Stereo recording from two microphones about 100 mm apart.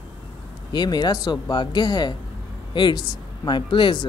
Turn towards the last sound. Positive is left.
turn(degrees=55)  # may be behind; listen again after turning